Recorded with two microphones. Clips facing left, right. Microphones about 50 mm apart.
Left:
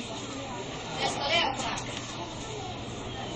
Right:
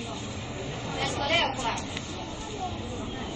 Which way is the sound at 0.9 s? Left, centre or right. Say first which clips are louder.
Right 1 dB; centre.